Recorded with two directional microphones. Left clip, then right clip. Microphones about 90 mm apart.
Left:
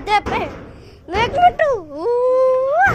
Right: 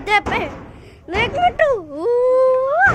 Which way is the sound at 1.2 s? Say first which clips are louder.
Left 3 dB; 5° left (ahead or behind).